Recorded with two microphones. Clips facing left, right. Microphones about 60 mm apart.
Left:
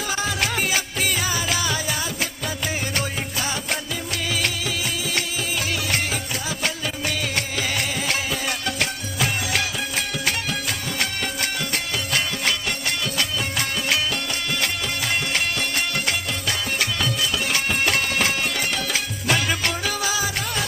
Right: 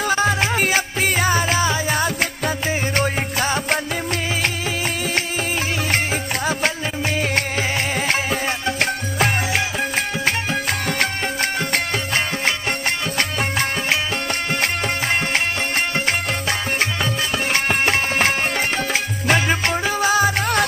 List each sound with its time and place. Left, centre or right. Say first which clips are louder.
0.0 s music: right 6 dB; right
3.0 s music: right 6 dB; right
7.2 s music: right 5 dB; right
13.2 s music: right 6 dB; right
17.0 s music: right 2 dB; right